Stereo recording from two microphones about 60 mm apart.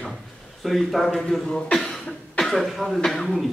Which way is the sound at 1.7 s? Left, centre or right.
Centre.